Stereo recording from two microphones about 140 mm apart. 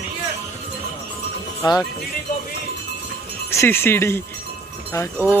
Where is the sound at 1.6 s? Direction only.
30° left (ahead or behind).